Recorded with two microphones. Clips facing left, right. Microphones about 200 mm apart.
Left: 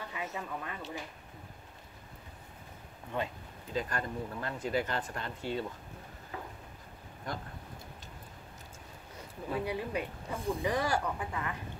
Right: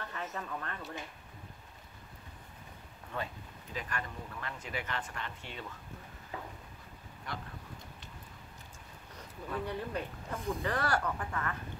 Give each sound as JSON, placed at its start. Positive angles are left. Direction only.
{"t": 0.0, "sound": "speech", "side_deg": 10}
{"t": 3.1, "sound": "speech", "side_deg": 15}
{"t": 3.7, "sound": "speech", "side_deg": 35}
{"t": 9.5, "sound": "speech", "side_deg": 10}